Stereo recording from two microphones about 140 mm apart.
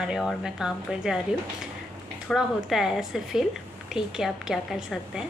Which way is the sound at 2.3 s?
5° right (ahead or behind).